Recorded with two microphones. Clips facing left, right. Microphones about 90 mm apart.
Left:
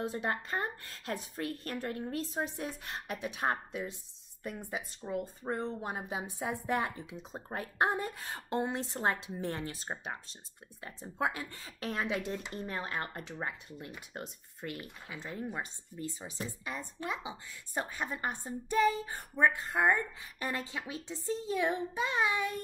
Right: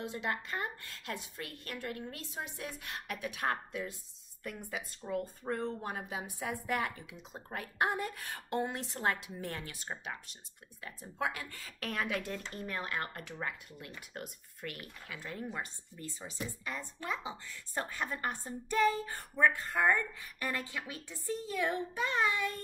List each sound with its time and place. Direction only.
0.0 s a woman's voice: 35° left (ahead or behind); by 22.6 s 15° left (ahead or behind)